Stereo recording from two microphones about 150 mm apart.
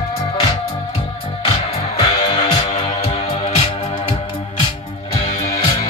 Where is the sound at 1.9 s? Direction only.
35° left (ahead or behind).